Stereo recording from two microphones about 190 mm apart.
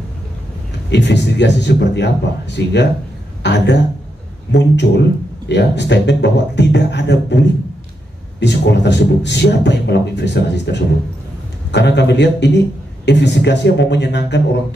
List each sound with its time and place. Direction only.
0.9 s a man's voice: 65° left (ahead or behind)